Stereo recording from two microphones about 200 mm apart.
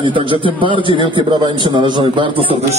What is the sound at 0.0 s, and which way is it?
A man's voice, 25° right (ahead or behind).